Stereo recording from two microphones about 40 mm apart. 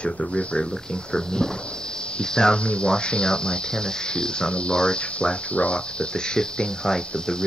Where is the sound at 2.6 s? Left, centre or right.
Left.